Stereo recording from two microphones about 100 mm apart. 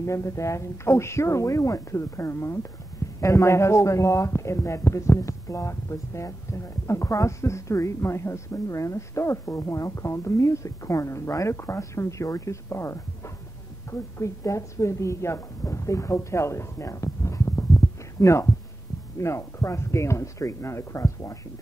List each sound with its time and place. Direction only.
0.0 s a woman's voice: 30° left (ahead or behind)